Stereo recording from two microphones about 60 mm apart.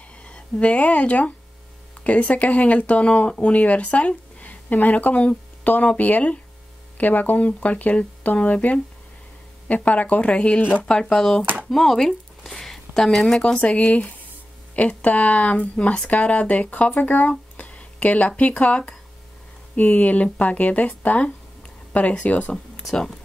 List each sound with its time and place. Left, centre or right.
0.2 s speech: left
9.8 s speech: left; by 11.4 s centre
11.7 s a sound: centre
13.6 s speech: left
22.8 s speech: centre